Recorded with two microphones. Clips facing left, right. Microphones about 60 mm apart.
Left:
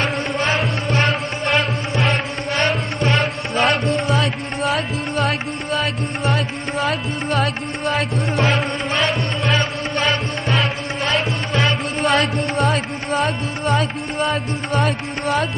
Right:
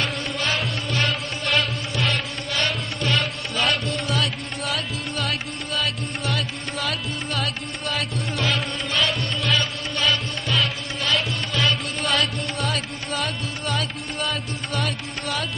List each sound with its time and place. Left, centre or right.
0.0 s music: left
5.1 s music: left
6.3 s music: left
12.6 s music: left